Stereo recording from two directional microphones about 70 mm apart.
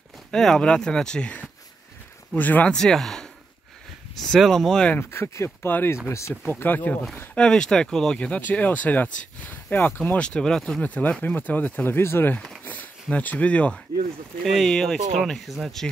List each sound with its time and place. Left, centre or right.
0.3 s speech: centre
2.7 s speech: centre
4.9 s speech: left
6.0 s speech: left
6.4 s speech: left
7.3 s speech: centre
8.4 s speech: left
10.8 s speech: left
12.6 s a sound: left
14.4 s speech: centre